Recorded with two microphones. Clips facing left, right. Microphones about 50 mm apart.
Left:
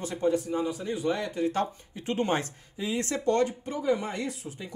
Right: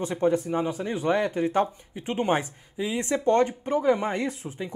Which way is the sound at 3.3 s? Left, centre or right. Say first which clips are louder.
Right 4 dB; right.